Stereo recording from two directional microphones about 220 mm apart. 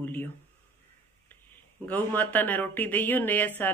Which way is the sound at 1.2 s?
10° left (ahead or behind).